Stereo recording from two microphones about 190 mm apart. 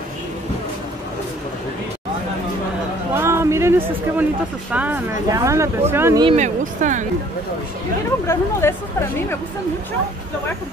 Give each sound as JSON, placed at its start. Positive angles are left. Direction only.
{"t": 3.2, "sound": "speech", "side_deg": -15}
{"t": 6.2, "sound": "speech", "side_deg": -40}
{"t": 8.3, "sound": "speech", "side_deg": 15}